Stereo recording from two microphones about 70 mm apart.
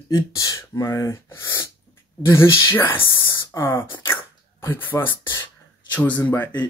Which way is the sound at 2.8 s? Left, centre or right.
Left.